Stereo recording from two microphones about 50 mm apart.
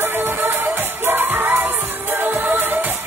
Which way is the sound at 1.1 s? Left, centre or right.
Right.